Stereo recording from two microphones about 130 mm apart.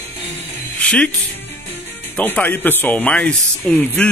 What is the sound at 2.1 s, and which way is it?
A man's voice, 10° left (ahead or behind).